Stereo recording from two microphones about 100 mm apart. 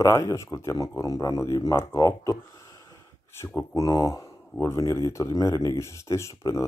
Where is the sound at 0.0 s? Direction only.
30° left (ahead or behind).